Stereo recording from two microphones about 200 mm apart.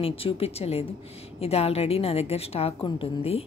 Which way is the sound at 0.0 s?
30° left (ahead or behind).